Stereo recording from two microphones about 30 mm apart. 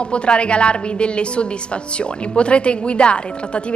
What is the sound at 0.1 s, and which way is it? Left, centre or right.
Speech, left.